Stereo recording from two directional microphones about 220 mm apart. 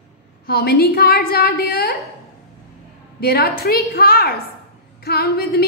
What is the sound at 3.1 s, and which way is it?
A woman's voice, 45° left (ahead or behind).